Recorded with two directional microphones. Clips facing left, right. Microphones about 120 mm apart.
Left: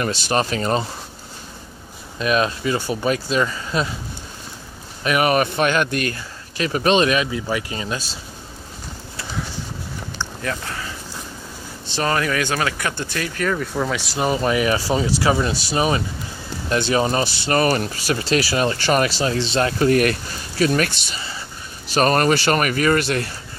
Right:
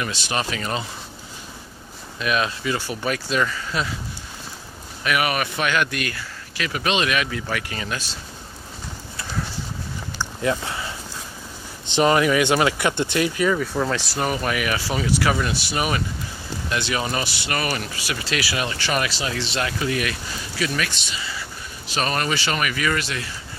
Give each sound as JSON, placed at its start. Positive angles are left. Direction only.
{"t": 0.0, "sound": "speech", "side_deg": 40}
{"t": 2.1, "sound": "speech", "side_deg": 35}
{"t": 5.0, "sound": "speech", "side_deg": 35}
{"t": 7.2, "sound": "speech", "side_deg": 20}
{"t": 10.1, "sound": "a sound", "side_deg": -20}
{"t": 11.8, "sound": "speech", "side_deg": -20}
{"t": 14.1, "sound": "speech", "side_deg": 25}